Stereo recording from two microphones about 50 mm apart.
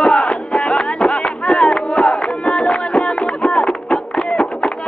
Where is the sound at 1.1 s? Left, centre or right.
Centre.